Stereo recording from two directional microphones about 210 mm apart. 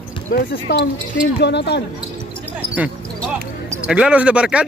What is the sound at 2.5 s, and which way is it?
Basketball bounce, 5° right (ahead or behind).